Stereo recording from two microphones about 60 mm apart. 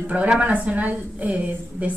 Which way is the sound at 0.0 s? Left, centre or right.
Right.